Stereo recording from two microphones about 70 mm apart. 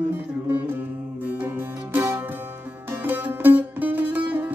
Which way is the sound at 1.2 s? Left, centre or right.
Right.